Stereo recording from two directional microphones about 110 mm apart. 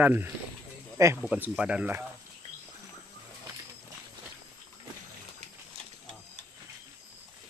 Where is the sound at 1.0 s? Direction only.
30° right (ahead or behind).